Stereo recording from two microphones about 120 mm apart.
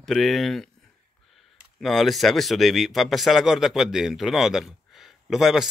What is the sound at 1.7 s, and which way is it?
Speech, centre (ahead or behind).